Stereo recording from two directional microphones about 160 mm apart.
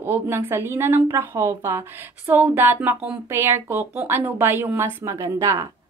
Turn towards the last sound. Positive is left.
turn(degrees=-20)  # may be behind; listen again after turning